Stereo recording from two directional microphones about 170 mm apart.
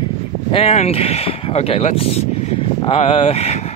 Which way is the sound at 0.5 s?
35° left (ahead or behind).